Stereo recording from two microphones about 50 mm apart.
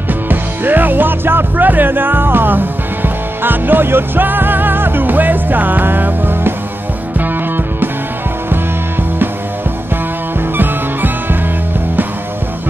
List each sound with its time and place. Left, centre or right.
0.1 s music: right